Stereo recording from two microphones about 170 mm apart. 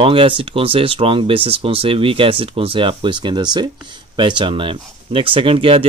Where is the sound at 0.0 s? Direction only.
30° right (ahead or behind).